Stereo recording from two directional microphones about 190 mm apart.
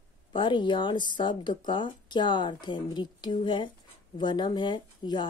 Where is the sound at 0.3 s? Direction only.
25° left (ahead or behind).